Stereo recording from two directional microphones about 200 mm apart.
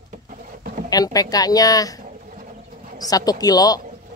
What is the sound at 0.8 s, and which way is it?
Speech, 20° left (ahead or behind).